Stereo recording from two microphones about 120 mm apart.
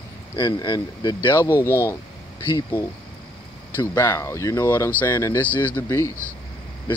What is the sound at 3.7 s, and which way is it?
Speech, 20° left (ahead or behind).